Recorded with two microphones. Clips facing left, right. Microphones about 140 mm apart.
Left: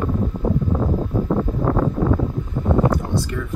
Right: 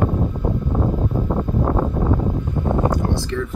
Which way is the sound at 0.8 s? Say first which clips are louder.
Even; 15° right (ahead or behind).